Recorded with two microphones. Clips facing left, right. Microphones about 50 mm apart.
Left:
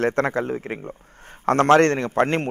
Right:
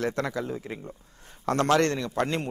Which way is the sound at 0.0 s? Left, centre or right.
Left.